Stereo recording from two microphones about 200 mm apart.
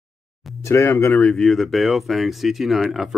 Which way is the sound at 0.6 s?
15° left (ahead or behind).